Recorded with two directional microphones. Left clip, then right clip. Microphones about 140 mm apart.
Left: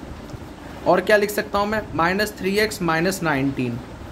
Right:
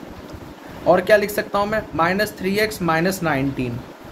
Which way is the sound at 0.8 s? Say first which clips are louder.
Right 2 dB; 20° left (ahead or behind).